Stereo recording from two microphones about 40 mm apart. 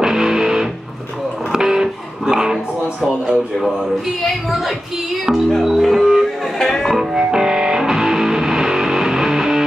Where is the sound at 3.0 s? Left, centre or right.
Centre.